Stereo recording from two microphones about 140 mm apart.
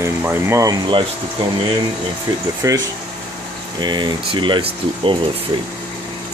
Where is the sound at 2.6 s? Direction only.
25° right (ahead or behind).